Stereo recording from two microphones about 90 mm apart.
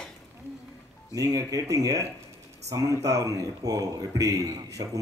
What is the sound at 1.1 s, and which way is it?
A man's voice, 40° right (ahead or behind).